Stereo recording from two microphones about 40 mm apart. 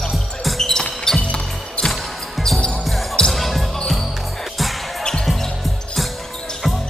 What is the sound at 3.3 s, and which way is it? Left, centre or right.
Basketball bounce, centre.